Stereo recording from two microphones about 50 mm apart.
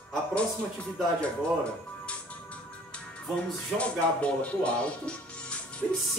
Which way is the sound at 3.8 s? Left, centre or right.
Left.